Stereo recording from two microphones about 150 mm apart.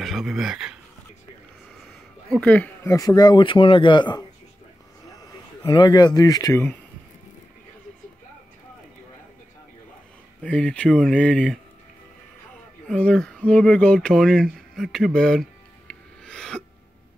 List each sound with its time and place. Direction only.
0.0 s speech: centre (ahead or behind)
2.4 s speech: 10° left (ahead or behind); by 4.3 s 30° left (ahead or behind)
5.6 s speech: 30° left (ahead or behind)
10.4 s speech: 5° left (ahead or behind)
12.8 s speech: 5° left (ahead or behind)
15.9 s music: 5° left (ahead or behind)